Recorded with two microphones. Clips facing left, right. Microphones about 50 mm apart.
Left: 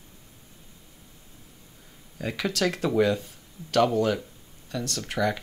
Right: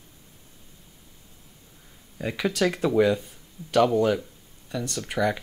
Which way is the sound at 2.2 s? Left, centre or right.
Centre.